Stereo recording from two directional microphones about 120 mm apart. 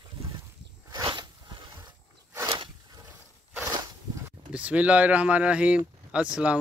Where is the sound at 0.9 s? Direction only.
40° right (ahead or behind).